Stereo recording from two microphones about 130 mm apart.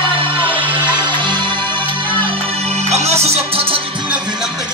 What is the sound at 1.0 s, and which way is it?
Music, 35° right (ahead or behind).